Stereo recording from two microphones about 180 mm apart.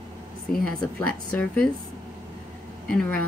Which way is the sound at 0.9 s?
5° left (ahead or behind).